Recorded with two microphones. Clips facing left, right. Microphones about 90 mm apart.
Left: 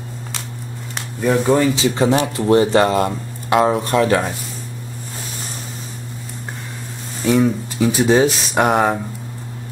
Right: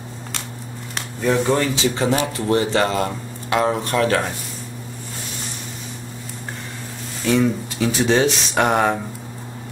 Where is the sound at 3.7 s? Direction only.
10° left (ahead or behind).